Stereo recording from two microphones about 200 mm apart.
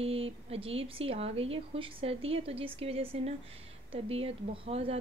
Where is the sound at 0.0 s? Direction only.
30° right (ahead or behind).